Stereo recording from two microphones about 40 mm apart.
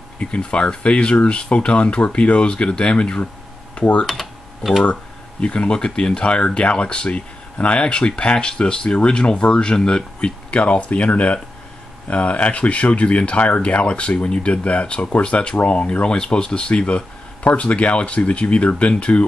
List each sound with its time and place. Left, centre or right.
0.2 s speech: left
4.0 s speech: centre
5.4 s speech: left